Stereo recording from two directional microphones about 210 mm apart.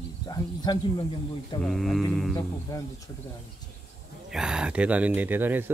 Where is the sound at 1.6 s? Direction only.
Centre (ahead or behind).